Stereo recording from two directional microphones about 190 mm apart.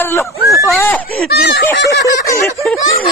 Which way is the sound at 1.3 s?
55° left (ahead or behind).